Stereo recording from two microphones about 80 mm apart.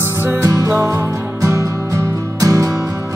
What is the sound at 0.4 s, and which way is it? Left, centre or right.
Music, right.